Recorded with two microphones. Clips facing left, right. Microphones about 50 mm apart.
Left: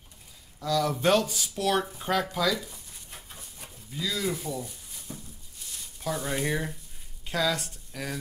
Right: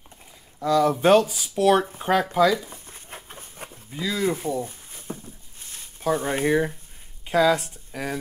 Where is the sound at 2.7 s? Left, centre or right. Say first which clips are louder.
Right 6 dB; right.